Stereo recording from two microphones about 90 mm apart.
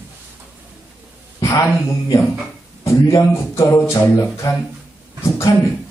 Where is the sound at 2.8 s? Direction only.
35° left (ahead or behind).